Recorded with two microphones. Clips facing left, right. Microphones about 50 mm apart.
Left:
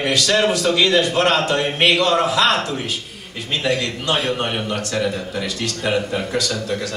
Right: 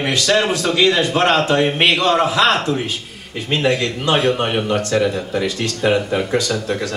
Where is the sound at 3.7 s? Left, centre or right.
Right.